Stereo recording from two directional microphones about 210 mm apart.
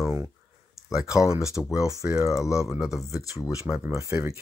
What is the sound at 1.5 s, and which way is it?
Speech, 5° right (ahead or behind).